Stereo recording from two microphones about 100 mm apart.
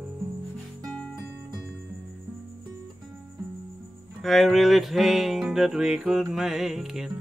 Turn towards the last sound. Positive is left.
turn(degrees=-5)  # may be behind; listen again after turning